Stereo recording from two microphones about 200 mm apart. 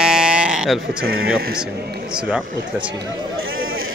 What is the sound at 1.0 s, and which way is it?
Speech, 50° right (ahead or behind).